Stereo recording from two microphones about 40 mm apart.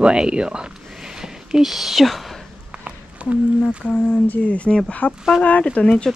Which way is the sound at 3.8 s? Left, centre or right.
Left.